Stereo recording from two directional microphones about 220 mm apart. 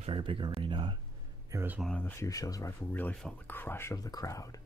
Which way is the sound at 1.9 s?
10° left (ahead or behind).